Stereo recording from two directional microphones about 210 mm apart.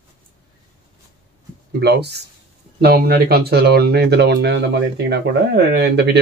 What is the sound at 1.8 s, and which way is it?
Speech, 50° right (ahead or behind).